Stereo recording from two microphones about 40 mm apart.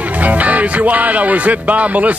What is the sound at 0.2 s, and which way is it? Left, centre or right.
Speech, right.